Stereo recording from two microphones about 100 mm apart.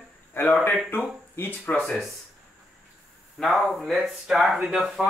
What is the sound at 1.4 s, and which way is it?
Speech, 20° left (ahead or behind).